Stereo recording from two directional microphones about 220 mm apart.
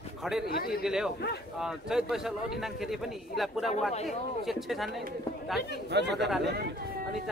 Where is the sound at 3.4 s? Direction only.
Centre (ahead or behind).